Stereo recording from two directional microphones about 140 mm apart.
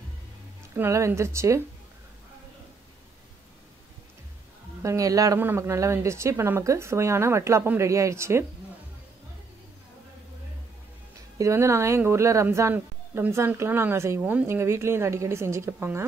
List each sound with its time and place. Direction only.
0.7 s a woman's voice: 20° right (ahead or behind)
4.8 s a woman's voice: 25° right (ahead or behind)
11.3 s a woman's voice: 20° right (ahead or behind)